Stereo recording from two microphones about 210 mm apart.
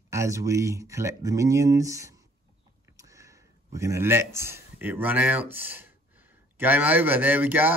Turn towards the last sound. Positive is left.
turn(degrees=-10)  # may be behind; listen again after turning